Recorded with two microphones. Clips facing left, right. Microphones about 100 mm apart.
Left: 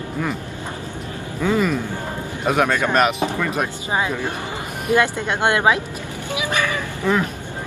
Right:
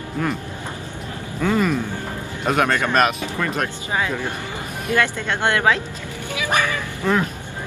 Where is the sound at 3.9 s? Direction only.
20° left (ahead or behind).